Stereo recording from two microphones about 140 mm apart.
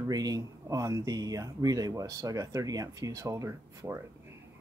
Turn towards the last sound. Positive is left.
turn(degrees=-20)  # may be behind; listen again after turning